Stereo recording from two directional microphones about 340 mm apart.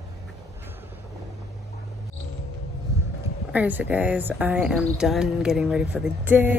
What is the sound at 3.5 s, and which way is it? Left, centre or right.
Speech, centre.